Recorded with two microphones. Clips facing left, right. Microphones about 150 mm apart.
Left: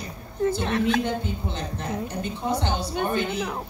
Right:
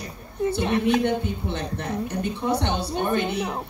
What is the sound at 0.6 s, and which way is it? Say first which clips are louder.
Speech: right 5 dB; 15° right (ahead or behind).